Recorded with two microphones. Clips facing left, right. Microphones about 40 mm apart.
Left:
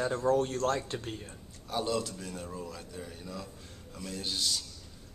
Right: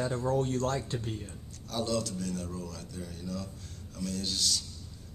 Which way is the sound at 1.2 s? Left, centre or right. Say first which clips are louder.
Right 1 dB; centre.